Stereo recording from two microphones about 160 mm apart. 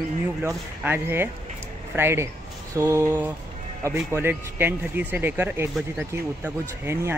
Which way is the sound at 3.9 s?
15° right (ahead or behind).